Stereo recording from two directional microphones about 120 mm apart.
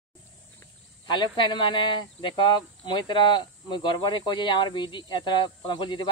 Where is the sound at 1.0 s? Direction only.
40° left (ahead or behind).